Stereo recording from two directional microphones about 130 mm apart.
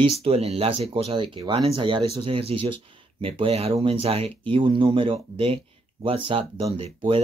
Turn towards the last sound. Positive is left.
turn(degrees=-45)  # may be behind; listen again after turning